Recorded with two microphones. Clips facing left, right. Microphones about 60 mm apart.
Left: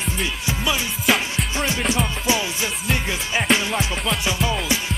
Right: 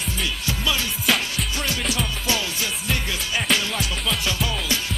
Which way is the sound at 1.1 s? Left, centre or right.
Centre.